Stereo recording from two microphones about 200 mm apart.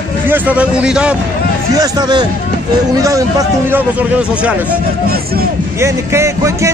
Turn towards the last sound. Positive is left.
turn(degrees=-15)  # may be behind; listen again after turning